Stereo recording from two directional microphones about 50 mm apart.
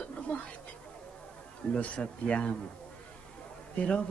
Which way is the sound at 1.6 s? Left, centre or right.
Left.